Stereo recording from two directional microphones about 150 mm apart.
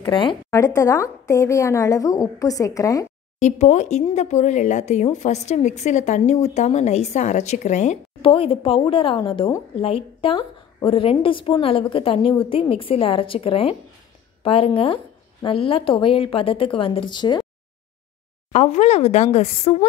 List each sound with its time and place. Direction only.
0.0 s a woman's voice: 30° left (ahead or behind)
0.5 s a woman's voice: 20° left (ahead or behind)
3.3 s a woman's voice: 50° left (ahead or behind)
8.2 s a woman's voice: 35° left (ahead or behind)
18.5 s a woman's voice: 50° left (ahead or behind)